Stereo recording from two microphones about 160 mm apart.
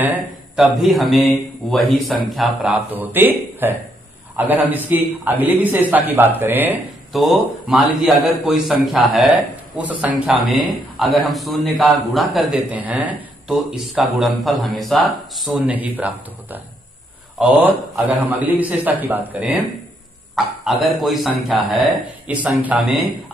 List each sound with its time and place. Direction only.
0.0 s a man's voice: 10° right (ahead or behind)
7.1 s a man's voice: centre (ahead or behind)